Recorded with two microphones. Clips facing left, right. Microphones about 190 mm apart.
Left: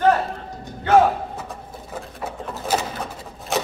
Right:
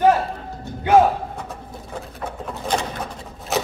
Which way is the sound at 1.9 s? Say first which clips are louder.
Even; 5° left (ahead or behind).